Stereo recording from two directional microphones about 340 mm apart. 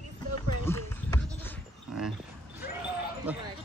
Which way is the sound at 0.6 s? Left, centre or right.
Centre.